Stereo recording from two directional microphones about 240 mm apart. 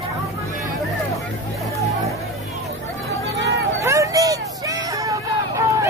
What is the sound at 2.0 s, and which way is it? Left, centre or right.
Chatter, centre.